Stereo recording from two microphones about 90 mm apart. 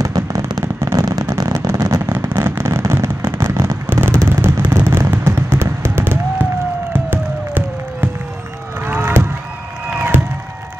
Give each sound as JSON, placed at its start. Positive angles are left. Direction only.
{"t": 0.0, "sound": "fireworks", "side_deg": -35}
{"t": 0.9, "sound": "vehicle", "side_deg": -45}
{"t": 2.0, "sound": "fireworks", "side_deg": -25}
{"t": 6.9, "sound": "music", "side_deg": -20}
{"t": 8.8, "sound": "a sound", "side_deg": -25}